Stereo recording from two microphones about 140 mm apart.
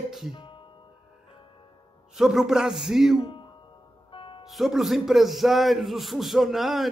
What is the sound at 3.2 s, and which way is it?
Speech, 40° left (ahead or behind).